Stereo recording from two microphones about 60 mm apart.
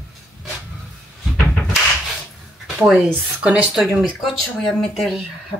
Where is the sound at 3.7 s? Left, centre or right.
Centre.